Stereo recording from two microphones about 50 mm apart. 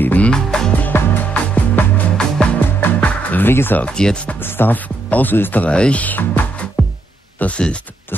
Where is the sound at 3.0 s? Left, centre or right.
Left.